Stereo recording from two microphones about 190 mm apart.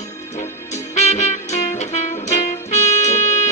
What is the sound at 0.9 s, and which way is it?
Music, 35° left (ahead or behind).